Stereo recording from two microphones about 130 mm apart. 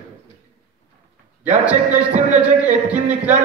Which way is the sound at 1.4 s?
10° right (ahead or behind).